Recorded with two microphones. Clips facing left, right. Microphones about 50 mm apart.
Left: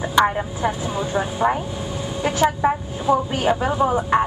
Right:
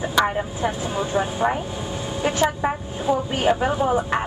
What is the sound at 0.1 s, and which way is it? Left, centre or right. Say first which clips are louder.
Speech: left 4 dB; centre.